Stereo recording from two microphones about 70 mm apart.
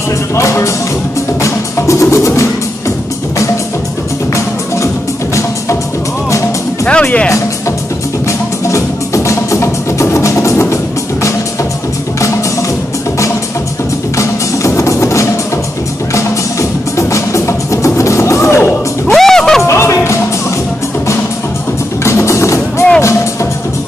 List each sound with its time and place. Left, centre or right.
0.4 s speech: left
1.4 s music: left
6.9 s speech: centre
8.3 s music: left
14.1 s music: left
16.9 s music: left
19.1 s music: centre
19.6 s music: left
22.0 s music: left